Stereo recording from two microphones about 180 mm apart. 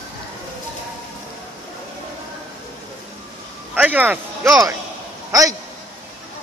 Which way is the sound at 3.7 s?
10° right (ahead or behind).